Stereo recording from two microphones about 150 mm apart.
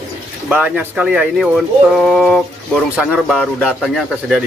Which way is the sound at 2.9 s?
5° right (ahead or behind).